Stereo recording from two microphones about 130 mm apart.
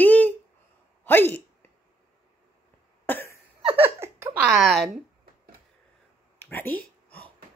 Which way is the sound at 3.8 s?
20° right (ahead or behind).